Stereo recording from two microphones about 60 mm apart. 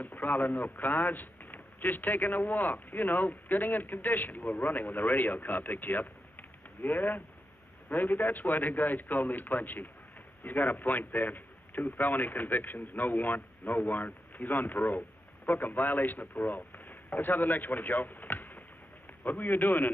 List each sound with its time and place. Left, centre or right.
0.0 s a man's voice: left